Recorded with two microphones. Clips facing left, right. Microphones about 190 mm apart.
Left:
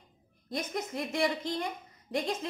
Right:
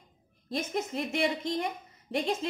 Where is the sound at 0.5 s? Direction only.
25° right (ahead or behind).